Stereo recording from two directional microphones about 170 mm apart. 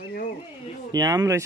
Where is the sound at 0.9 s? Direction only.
25° right (ahead or behind).